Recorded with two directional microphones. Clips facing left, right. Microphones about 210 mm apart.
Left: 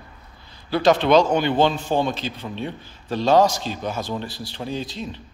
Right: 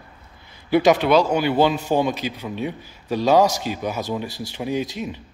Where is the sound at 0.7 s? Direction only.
10° right (ahead or behind).